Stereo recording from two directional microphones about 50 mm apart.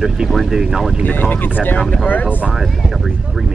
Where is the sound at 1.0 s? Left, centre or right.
Left.